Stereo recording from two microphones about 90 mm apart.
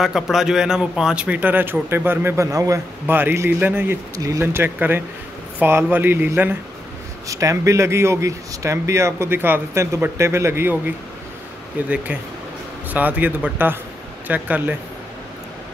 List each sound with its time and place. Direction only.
0.0 s a man's voice: 5° right (ahead or behind); by 2.8 s 35° right (ahead or behind)
3.1 s speech: 25° right (ahead or behind)
7.2 s speech: 35° right (ahead or behind)
12.9 s a man's voice: 15° right (ahead or behind)